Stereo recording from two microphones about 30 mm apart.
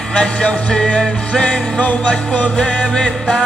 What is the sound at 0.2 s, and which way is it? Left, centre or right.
Music, left.